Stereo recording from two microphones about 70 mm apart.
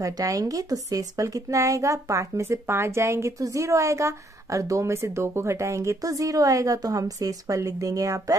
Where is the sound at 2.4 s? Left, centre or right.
Right.